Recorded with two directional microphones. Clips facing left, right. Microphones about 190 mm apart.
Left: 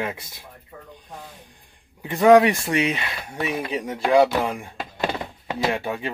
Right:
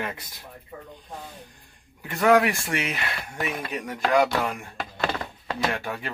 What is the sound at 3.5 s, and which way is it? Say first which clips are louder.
Speech: left 7 dB; 10° left (ahead or behind).